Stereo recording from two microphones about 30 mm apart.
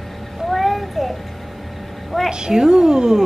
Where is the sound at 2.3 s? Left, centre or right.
Right.